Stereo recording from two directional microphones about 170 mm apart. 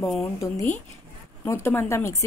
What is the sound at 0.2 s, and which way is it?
A woman's voice, 20° left (ahead or behind).